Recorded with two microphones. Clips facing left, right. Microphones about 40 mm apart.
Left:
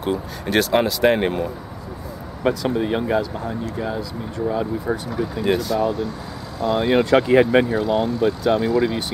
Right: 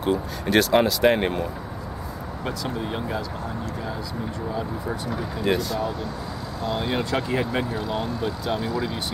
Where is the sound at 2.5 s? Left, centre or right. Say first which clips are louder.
Left 9 dB; left.